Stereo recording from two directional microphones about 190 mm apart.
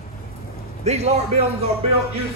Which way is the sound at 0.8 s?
35° right (ahead or behind).